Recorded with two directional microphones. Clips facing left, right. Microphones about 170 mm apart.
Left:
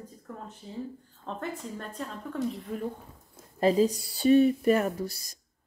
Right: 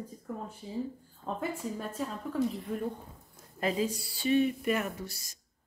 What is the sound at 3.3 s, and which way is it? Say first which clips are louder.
Speech: left 8 dB; 35° left (ahead or behind).